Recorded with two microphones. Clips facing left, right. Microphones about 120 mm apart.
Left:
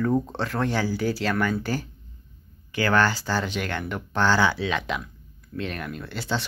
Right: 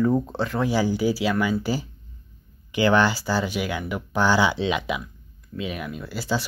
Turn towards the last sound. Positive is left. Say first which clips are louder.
# right 2 dB
turn(degrees=-5)  # may be behind; listen again after turning